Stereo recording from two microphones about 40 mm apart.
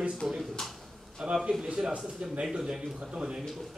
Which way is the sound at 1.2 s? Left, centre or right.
Centre.